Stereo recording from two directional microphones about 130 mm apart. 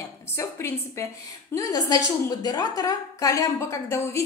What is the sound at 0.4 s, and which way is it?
A woman's voice, 20° left (ahead or behind).